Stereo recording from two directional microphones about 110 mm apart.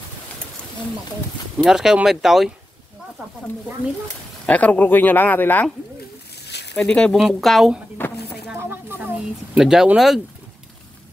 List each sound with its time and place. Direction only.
1.6 s speech: 5° right (ahead or behind)
4.5 s speech: 15° left (ahead or behind)
6.7 s speech: 10° left (ahead or behind)
8.5 s a sound: 20° right (ahead or behind)
9.6 s speech: 5° right (ahead or behind)